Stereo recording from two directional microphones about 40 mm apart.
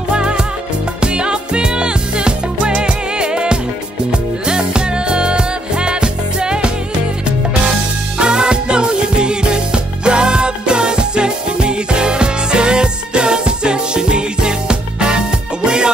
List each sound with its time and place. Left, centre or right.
0.1 s music: right
8.2 s music: right